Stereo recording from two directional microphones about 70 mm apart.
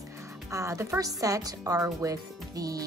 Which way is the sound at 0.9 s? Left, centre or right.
Right.